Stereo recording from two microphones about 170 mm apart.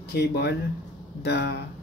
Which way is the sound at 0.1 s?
75° left (ahead or behind).